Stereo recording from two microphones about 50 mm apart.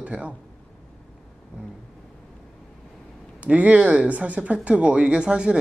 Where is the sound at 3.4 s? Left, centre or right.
Right.